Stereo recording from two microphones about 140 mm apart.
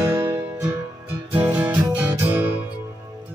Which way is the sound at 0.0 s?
20° right (ahead or behind).